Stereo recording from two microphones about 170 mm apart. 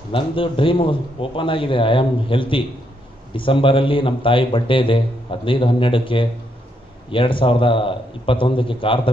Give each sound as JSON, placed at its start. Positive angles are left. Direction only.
{"t": 0.1, "sound": "a man's voice", "side_deg": 30}